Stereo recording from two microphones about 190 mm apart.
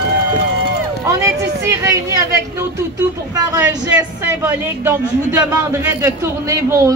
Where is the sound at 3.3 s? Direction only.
20° right (ahead or behind).